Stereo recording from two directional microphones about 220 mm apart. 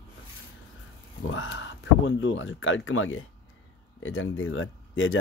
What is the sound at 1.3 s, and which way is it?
Speech, 60° left (ahead or behind).